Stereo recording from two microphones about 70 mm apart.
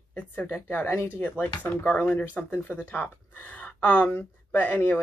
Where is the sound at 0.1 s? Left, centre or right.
Left.